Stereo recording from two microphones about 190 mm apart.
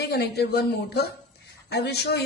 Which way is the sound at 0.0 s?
60° left (ahead or behind).